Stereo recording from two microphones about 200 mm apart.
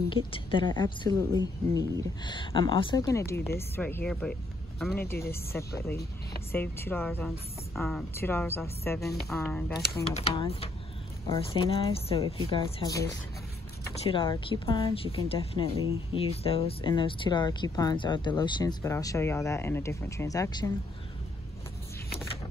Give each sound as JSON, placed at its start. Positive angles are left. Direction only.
{"t": 0.1, "sound": "a woman's voice", "side_deg": 25}
{"t": 10.0, "sound": "speech", "side_deg": 30}